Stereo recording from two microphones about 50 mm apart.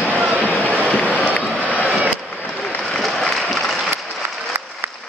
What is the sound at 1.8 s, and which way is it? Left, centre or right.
Vehicle, right.